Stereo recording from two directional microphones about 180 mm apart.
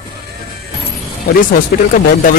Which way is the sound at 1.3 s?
55° left (ahead or behind).